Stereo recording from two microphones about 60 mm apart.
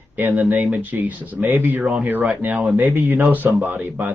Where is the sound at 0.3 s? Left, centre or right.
Right.